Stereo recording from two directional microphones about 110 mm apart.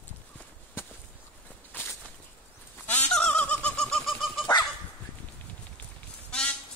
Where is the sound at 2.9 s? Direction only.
10° left (ahead or behind).